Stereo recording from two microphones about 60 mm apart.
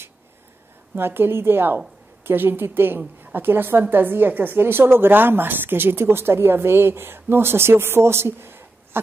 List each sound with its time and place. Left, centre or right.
0.9 s a woman's voice: right